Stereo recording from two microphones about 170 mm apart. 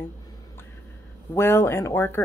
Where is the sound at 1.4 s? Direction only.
15° left (ahead or behind).